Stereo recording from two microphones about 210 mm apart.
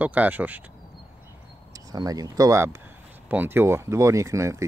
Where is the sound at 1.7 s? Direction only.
15° right (ahead or behind).